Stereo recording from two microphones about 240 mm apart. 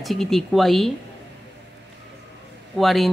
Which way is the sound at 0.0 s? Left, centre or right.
Centre.